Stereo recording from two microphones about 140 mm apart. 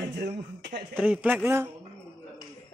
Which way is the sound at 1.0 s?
10° right (ahead or behind).